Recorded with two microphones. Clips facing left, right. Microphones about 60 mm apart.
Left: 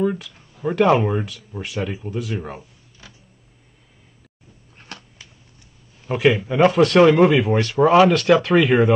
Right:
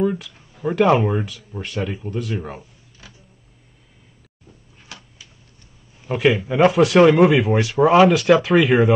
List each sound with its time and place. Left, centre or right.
0.0 s speech: centre
4.7 s a sound: left
5.9 s speech: centre